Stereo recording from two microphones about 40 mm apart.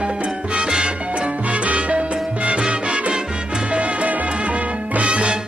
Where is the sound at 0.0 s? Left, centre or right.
Right.